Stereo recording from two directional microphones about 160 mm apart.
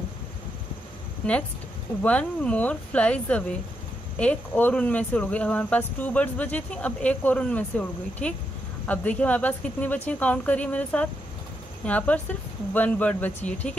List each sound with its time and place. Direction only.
2.0 s speech: 5° left (ahead or behind)